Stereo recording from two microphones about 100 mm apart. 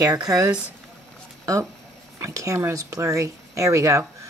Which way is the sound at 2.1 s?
30° right (ahead or behind).